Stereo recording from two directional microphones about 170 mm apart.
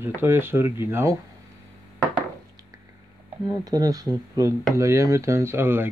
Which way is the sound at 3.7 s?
20° right (ahead or behind).